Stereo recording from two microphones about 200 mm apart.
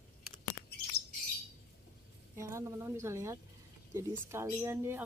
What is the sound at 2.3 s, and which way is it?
Speech, 15° right (ahead or behind).